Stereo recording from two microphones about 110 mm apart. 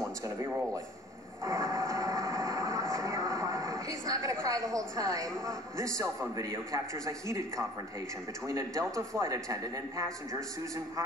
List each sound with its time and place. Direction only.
0.2 s speech: 30° right (ahead or behind)
1.4 s vehicle: 30° right (ahead or behind)
5.9 s a man's voice: 30° right (ahead or behind)